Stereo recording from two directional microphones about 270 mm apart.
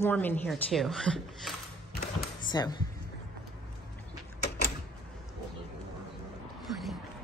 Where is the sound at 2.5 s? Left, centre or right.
Centre.